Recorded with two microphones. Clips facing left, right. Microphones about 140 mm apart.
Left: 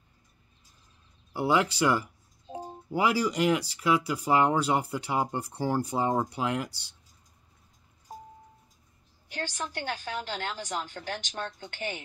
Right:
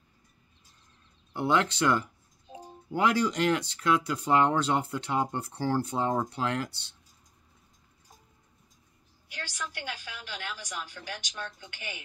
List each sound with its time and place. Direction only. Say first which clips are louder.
1.3 s speech: left 1 dB; 5° left (ahead or behind)
9.3 s a woman's voice: left 5 dB; 45° left (ahead or behind)